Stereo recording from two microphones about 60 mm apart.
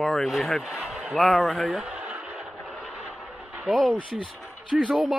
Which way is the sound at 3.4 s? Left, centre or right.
Centre.